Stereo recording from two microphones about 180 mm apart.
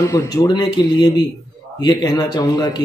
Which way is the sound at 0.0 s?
15° left (ahead or behind).